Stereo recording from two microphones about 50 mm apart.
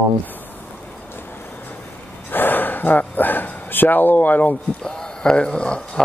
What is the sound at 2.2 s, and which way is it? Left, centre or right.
Gasp, left.